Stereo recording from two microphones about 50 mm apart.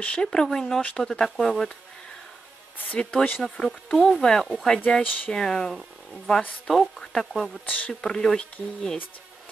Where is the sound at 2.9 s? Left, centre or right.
Left.